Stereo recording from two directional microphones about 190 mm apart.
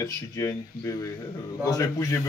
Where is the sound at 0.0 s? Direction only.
15° left (ahead or behind).